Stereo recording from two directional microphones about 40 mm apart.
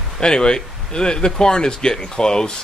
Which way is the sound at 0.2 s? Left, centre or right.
Centre.